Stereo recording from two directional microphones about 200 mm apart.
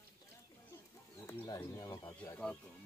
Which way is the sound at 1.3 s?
20° left (ahead or behind).